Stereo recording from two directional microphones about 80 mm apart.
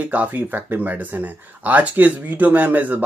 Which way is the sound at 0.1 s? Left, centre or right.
Right.